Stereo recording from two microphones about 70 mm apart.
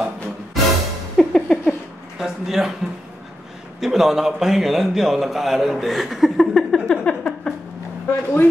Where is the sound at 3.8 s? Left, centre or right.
Centre.